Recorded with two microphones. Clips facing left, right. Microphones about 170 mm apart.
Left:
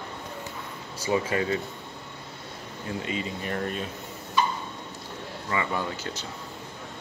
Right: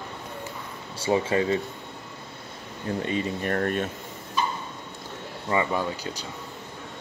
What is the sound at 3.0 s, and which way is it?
Speech, 45° right (ahead or behind).